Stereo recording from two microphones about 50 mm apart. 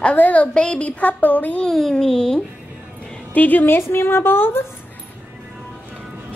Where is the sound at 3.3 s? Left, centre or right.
Left.